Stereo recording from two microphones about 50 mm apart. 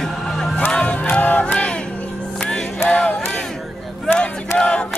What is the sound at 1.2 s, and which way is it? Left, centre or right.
Music, left.